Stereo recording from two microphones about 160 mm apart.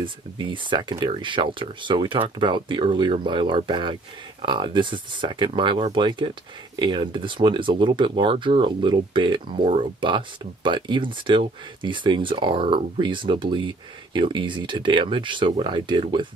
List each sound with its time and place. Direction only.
0.0 s speech: 30° right (ahead or behind)